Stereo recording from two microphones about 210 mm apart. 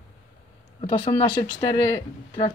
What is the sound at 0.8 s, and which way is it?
Speech, 25° left (ahead or behind).